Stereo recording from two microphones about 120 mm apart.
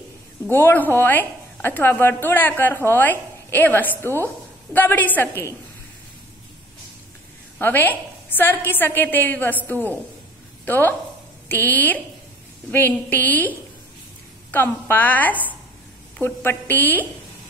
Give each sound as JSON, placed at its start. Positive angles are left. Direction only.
{"t": 0.5, "sound": "a woman's voice", "side_deg": 20}
{"t": 7.5, "sound": "a woman's voice", "side_deg": 15}
{"t": 14.5, "sound": "a woman's voice", "side_deg": 15}